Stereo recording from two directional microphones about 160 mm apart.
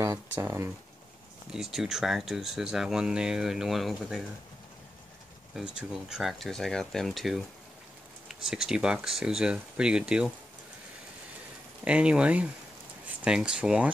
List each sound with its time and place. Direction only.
0.0 s speech: 20° right (ahead or behind)
1.5 s speech: 5° right (ahead or behind)
5.5 s speech: 5° right (ahead or behind)
8.5 s speech: 5° right (ahead or behind)
11.8 s speech: 5° right (ahead or behind)